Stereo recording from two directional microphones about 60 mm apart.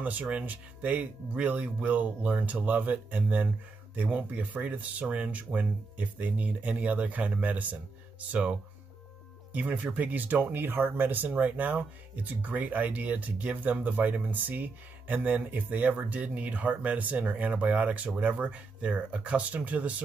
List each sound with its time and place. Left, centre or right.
0.0 s speech: right